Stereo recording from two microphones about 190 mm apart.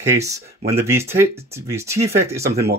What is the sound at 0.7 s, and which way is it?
Speech, 15° right (ahead or behind).